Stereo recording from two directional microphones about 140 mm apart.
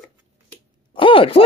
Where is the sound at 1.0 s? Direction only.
40° left (ahead or behind).